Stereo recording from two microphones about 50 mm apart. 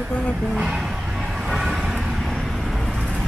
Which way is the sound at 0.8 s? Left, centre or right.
Centre.